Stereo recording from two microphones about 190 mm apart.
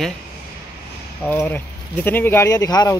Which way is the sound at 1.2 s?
10° left (ahead or behind).